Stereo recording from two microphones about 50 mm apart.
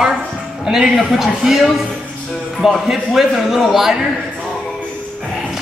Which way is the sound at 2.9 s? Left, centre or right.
Centre.